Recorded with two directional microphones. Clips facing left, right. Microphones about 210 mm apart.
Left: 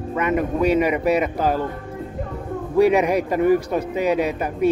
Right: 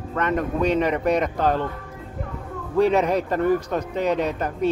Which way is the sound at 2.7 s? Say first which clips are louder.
Left 2 dB; 10° left (ahead or behind).